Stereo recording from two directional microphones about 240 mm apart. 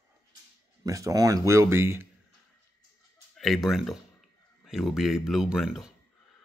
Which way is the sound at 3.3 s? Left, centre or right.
Centre.